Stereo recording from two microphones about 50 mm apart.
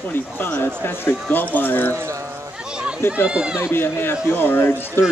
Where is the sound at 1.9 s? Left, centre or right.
Right.